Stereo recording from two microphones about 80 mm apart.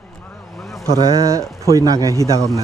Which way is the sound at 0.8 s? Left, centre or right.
Right.